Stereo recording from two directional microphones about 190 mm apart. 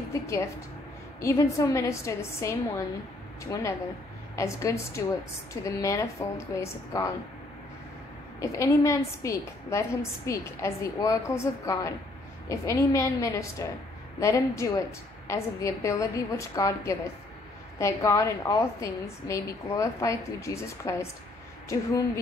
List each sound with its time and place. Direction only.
1.2 s a woman's voice: 15° left (ahead or behind)
8.4 s a woman's voice: 15° left (ahead or behind)